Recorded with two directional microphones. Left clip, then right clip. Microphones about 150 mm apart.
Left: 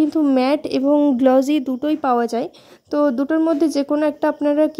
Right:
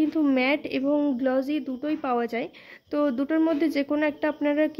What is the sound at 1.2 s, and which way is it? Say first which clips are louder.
Speech: left 10 dB; 55° left (ahead or behind).